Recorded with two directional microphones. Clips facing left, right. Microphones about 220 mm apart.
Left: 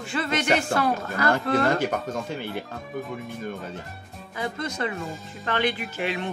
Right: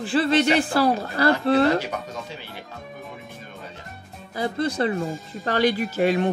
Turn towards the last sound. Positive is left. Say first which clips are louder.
# right 8 dB
turn(degrees=-40)  # may be behind; listen again after turning